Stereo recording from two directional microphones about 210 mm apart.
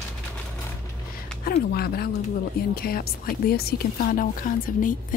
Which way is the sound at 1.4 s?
45° left (ahead or behind).